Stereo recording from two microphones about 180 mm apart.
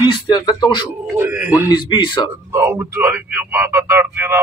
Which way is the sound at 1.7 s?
25° left (ahead or behind).